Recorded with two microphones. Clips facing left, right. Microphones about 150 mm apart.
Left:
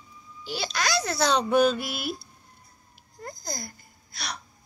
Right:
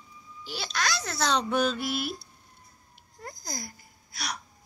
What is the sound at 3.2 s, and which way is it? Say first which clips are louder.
Speech: left 3 dB; 10° right (ahead or behind).